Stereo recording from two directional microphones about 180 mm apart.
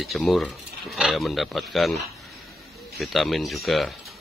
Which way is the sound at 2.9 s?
Centre (ahead or behind).